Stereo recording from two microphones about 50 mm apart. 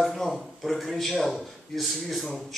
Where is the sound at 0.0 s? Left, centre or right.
Centre.